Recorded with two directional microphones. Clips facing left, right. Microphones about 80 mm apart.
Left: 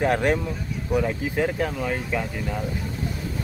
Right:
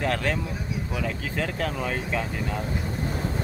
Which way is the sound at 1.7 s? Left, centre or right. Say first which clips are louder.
Left 2 dB; centre.